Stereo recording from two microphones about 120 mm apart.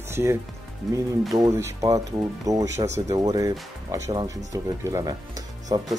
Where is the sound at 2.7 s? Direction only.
70° right (ahead or behind).